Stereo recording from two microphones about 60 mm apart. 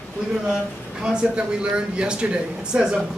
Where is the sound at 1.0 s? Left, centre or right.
Centre.